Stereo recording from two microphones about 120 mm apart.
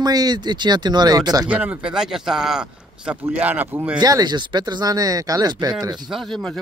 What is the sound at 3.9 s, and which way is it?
Speech, 35° right (ahead or behind).